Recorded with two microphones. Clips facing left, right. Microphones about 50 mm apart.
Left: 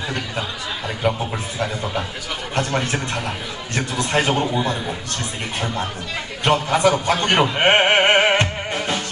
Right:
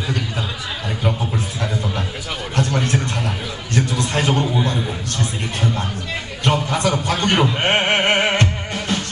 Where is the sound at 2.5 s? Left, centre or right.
Centre.